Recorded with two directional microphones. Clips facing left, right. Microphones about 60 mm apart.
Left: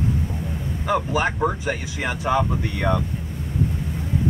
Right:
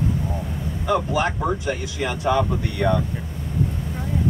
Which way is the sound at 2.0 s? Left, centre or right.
Left.